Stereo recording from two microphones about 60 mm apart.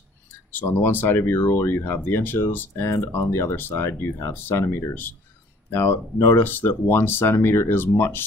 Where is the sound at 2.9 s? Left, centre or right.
Left.